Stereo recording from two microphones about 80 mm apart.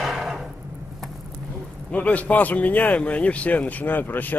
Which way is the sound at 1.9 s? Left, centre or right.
Centre.